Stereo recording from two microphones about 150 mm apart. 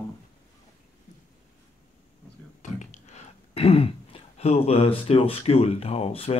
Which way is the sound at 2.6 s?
55° left (ahead or behind).